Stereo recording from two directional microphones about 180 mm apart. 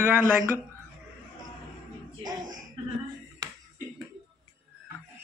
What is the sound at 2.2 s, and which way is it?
Speech, 20° right (ahead or behind).